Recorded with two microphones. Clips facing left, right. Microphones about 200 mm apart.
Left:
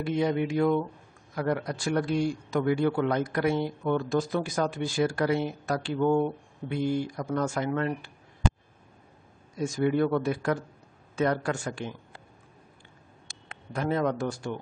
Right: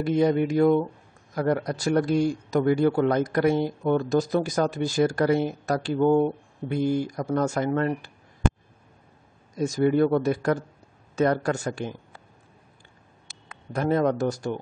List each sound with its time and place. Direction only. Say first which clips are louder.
0.0 s a man's voice: right 5 dB; 40° right (ahead or behind)
9.6 s a man's voice: right 4 dB; 40° right (ahead or behind)
13.7 s a man's voice: right 4 dB; 40° right (ahead or behind)